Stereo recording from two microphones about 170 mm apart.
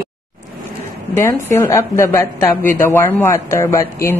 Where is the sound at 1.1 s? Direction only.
15° left (ahead or behind).